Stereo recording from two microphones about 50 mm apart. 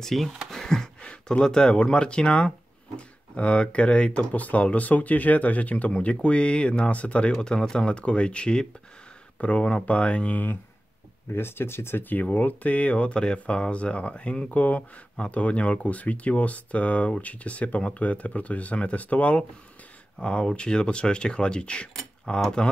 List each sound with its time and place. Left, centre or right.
0.0 s speech: centre; by 10.4 s left
11.3 s speech: left
12.1 s speech: left
22.6 s a sound: centre